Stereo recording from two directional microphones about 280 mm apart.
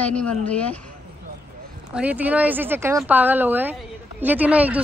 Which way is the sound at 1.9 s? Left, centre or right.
Centre.